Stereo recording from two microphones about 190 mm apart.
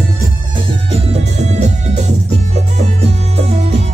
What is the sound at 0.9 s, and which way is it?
Music, 35° right (ahead or behind).